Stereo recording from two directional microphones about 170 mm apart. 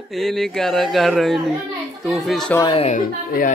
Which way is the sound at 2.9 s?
50° left (ahead or behind).